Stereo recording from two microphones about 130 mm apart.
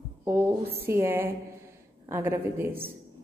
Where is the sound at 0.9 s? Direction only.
20° right (ahead or behind).